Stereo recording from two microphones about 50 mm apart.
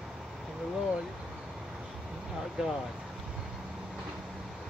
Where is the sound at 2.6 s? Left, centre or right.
Centre.